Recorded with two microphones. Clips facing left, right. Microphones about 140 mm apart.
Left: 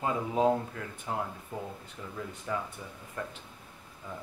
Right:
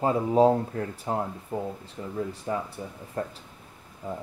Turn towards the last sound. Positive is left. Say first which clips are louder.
# right 7 dB
turn(degrees=-35)  # may be behind; listen again after turning